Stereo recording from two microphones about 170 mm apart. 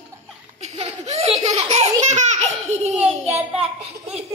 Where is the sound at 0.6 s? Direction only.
40° right (ahead or behind).